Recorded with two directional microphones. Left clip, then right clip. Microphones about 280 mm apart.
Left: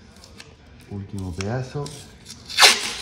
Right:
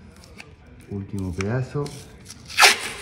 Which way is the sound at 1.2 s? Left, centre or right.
Centre.